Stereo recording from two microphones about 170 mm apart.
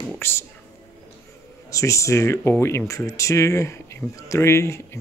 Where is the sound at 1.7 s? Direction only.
20° left (ahead or behind).